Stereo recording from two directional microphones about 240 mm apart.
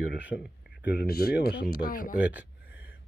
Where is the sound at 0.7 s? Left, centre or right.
Left.